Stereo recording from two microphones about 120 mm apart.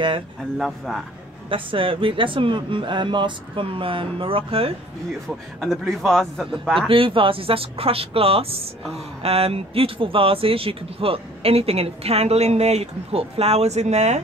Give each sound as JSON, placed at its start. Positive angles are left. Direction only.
{"t": 0.6, "sound": "a man's voice", "side_deg": 0}
{"t": 1.5, "sound": "speech", "side_deg": -45}
{"t": 5.6, "sound": "a man's voice", "side_deg": 0}
{"t": 6.9, "sound": "speech", "side_deg": -45}